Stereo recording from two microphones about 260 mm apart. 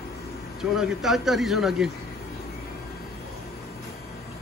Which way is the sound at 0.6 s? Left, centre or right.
Centre.